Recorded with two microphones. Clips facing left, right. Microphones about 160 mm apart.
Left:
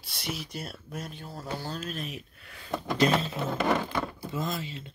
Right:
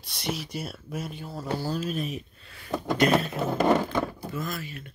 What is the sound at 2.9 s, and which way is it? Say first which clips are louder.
Speech: right 2 dB; 30° left (ahead or behind).